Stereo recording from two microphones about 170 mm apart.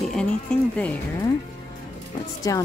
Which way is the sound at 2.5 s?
20° left (ahead or behind).